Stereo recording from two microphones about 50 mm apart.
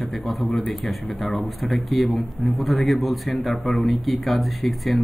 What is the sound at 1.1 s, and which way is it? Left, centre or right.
Speech, left.